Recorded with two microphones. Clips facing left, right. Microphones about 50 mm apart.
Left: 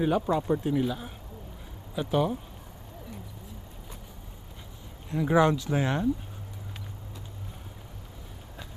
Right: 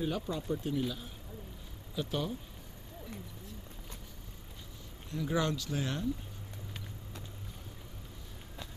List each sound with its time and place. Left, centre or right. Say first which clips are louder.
0.0 s speech: left 10 dB; left
0.7 s speech: left 7 dB; left
5.1 s speech: left 10 dB; left